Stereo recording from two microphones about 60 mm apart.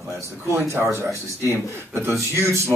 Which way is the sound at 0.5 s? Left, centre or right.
Right.